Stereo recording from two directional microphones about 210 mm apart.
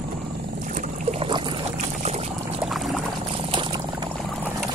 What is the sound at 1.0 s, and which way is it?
Trickle, 25° right (ahead or behind).